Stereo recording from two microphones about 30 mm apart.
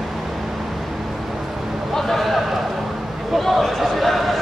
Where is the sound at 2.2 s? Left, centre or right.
Centre.